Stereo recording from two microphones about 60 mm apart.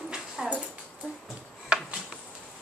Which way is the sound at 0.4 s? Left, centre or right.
Centre.